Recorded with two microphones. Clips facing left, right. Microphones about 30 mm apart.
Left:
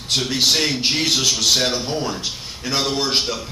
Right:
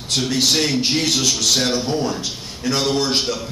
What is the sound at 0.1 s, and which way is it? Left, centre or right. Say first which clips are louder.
A man's voice: even; centre.